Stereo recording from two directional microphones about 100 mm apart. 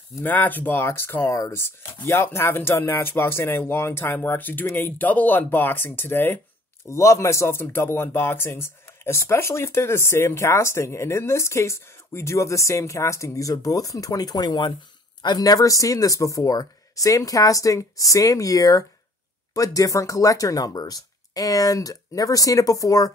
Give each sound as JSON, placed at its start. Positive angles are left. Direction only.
{"t": 0.2, "sound": "speech", "side_deg": 20}